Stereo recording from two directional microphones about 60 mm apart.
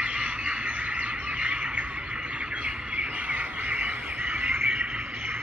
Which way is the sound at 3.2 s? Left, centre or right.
Right.